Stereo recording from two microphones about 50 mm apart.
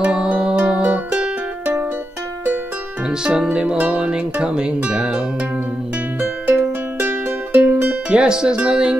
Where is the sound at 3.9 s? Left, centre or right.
Right.